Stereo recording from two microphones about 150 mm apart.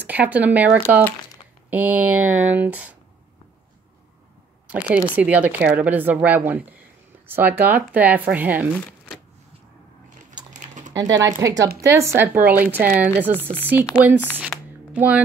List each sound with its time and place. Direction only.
0.0 s speech: 10° right (ahead or behind)
4.8 s speech: 10° right (ahead or behind)
10.9 s speech: 25° right (ahead or behind)
14.5 s a sound: 10° left (ahead or behind)
14.9 s speech: 10° right (ahead or behind)